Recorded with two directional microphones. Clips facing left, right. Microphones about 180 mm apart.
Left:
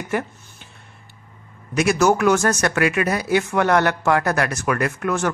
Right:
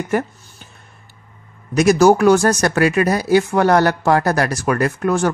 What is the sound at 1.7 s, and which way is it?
Speech, 40° right (ahead or behind).